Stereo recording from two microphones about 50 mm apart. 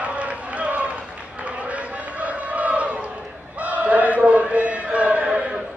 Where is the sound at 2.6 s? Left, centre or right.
Right.